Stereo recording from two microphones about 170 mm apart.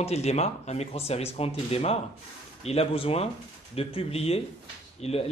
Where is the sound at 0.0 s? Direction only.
40° left (ahead or behind).